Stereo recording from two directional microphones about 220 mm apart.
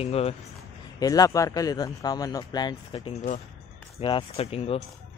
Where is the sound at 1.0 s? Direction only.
15° left (ahead or behind).